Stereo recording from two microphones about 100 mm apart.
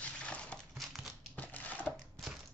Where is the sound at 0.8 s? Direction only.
Centre (ahead or behind).